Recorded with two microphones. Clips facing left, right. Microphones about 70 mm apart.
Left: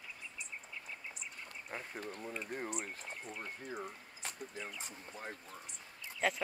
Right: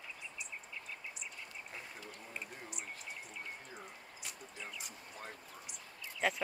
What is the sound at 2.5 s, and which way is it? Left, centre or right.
Speech, left.